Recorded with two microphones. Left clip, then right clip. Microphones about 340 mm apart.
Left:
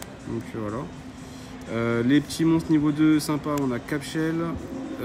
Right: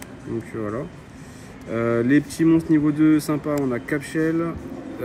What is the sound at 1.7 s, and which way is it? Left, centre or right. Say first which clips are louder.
Speech: right 3 dB; centre.